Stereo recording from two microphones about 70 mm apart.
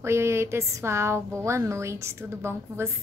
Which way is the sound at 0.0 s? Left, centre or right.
Right.